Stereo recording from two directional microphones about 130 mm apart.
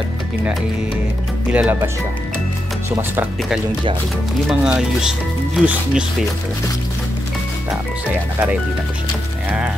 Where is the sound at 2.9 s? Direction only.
15° right (ahead or behind).